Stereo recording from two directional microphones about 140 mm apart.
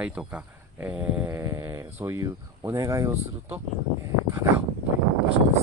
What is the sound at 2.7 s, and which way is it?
Speech, 20° right (ahead or behind).